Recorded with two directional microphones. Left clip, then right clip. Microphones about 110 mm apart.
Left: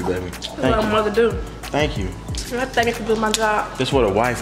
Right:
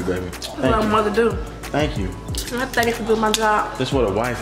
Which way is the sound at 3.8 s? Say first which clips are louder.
Left 2 dB; 20° left (ahead or behind).